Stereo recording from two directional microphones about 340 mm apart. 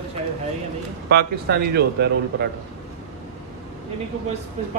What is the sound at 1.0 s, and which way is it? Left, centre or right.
A man's voice, right.